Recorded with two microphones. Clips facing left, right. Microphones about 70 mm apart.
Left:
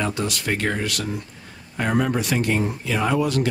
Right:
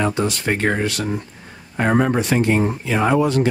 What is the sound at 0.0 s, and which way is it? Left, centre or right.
Speech, right.